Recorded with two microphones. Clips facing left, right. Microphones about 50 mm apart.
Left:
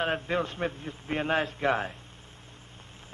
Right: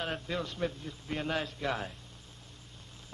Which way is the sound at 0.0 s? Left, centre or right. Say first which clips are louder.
Left 7 dB; left.